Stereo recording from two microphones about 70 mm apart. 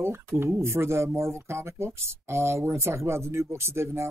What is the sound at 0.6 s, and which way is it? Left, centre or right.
Speech, right.